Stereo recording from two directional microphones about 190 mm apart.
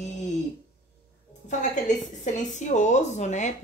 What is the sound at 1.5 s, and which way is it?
A woman's voice, 40° left (ahead or behind).